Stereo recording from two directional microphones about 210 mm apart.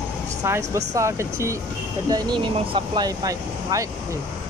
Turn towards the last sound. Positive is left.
turn(degrees=-15)  # may be behind; listen again after turning